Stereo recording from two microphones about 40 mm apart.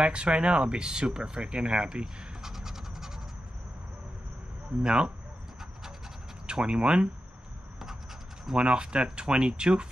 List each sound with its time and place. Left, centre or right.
0.0 s speech: right
2.4 s scratch: centre
4.8 s speech: right
6.4 s speech: right
8.5 s speech: right